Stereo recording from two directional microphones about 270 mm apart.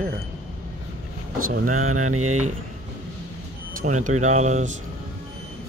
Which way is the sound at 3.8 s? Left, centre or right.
Right.